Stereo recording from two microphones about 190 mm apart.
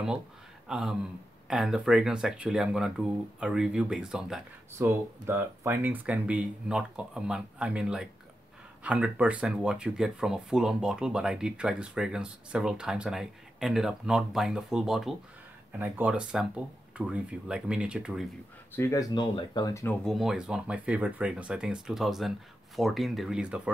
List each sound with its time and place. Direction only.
0.7 s a sound: 5° right (ahead or behind)
1.5 s speech: centre (ahead or behind)
18.8 s speech: 15° left (ahead or behind)
20.1 s speech: centre (ahead or behind)